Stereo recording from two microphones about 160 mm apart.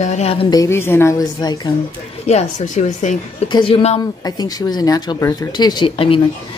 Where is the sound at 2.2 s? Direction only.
45° left (ahead or behind).